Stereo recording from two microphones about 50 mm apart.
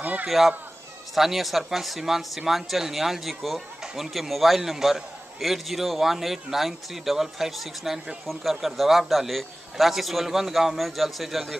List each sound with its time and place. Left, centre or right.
0.0 s speech: right
0.3 s a man's voice: centre